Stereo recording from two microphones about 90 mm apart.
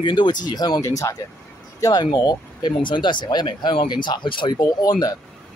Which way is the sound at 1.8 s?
50° left (ahead or behind).